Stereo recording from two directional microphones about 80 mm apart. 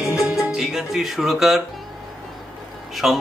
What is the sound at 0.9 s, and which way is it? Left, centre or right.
Music, centre.